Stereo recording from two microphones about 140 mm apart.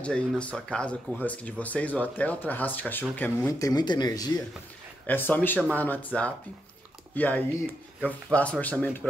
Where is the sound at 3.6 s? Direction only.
30° left (ahead or behind).